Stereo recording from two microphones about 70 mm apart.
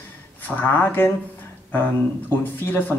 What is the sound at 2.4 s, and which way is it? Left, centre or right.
Speech, left.